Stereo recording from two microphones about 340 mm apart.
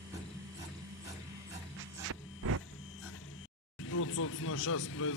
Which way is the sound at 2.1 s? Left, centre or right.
Right.